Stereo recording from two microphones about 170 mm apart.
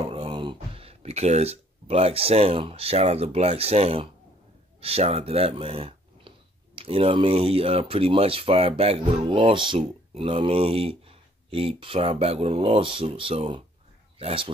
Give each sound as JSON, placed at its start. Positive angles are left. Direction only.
{"t": 0.1, "sound": "speech", "side_deg": -30}